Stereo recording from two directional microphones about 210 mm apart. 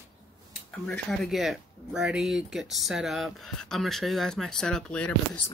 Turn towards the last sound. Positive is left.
turn(degrees=5)  # may be behind; listen again after turning